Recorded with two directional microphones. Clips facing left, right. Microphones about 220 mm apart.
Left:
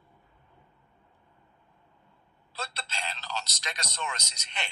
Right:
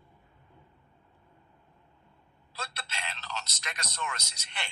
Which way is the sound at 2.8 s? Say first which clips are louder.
Left 3 dB; 35° left (ahead or behind).